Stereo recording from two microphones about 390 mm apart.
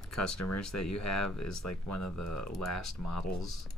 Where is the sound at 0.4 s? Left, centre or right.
Left.